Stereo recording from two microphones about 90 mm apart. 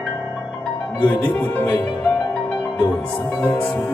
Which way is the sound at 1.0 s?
20° left (ahead or behind).